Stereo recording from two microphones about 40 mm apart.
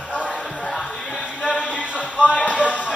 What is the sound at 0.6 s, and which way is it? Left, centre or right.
Music, centre.